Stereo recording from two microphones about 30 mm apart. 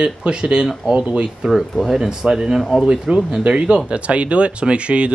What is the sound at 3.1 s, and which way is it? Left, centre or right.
Speech, right.